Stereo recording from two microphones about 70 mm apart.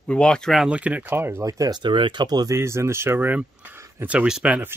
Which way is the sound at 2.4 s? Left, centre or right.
Right.